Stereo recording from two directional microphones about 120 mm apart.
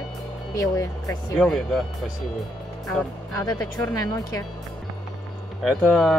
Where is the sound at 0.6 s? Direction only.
30° left (ahead or behind).